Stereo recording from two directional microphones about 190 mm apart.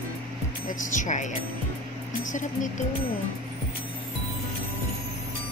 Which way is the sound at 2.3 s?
40° left (ahead or behind).